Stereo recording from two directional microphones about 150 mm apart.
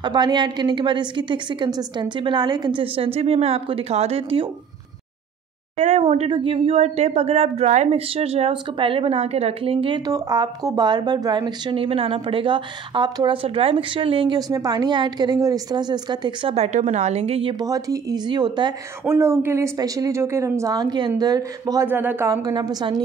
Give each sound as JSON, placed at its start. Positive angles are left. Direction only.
{"t": 0.0, "sound": "speech", "side_deg": -30}
{"t": 5.8, "sound": "a woman's voice", "side_deg": -45}
{"t": 16.5, "sound": "a woman's voice", "side_deg": -45}
{"t": 17.6, "sound": "a woman's voice", "side_deg": -20}
{"t": 19.0, "sound": "a woman's voice", "side_deg": -15}